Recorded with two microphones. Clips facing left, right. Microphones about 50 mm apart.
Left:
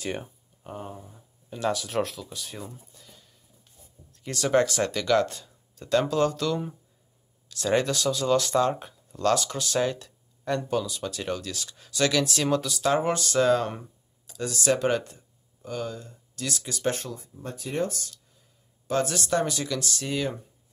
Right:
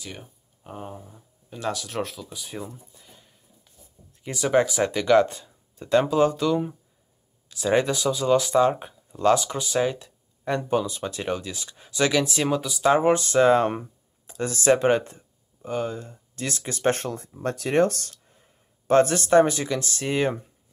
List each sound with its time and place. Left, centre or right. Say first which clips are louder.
0.7 s speech: right 1 dB; centre
2.8 s a sound: right 1 dB; centre
4.1 s speech: right 2 dB; centre; by 17.3 s right
17.4 s speech: right 9 dB; right
18.1 s speech: right 2 dB; right